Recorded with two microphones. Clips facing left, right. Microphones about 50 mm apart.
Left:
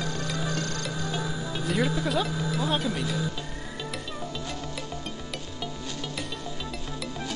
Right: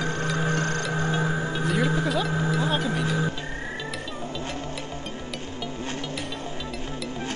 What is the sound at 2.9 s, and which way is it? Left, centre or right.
Speech, right.